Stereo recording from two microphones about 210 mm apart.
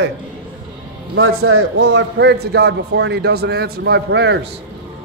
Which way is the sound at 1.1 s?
75° right (ahead or behind).